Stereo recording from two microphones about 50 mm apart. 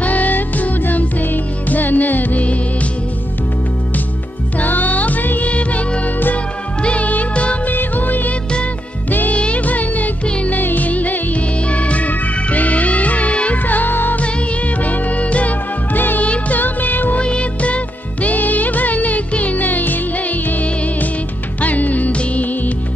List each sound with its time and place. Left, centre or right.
0.0 s music: left
4.6 s music: left
6.1 s music: left
6.8 s music: left
13.7 s music: left
14.8 s music: left
17.2 s music: left